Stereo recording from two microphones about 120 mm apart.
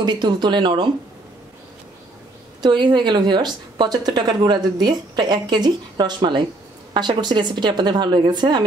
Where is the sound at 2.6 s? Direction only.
40° right (ahead or behind).